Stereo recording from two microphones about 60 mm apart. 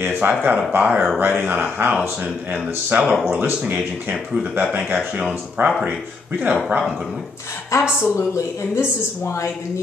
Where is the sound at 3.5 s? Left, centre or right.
Centre.